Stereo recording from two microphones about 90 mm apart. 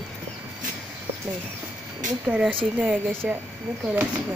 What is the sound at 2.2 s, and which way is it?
Speech, 5° right (ahead or behind).